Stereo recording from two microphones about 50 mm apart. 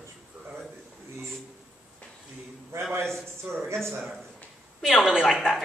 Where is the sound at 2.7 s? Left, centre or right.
Right.